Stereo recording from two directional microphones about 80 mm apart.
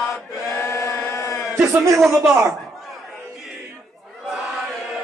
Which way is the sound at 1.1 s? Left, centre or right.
Left.